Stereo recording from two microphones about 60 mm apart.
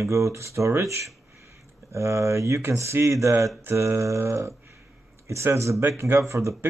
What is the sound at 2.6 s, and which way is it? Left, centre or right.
Speech, right.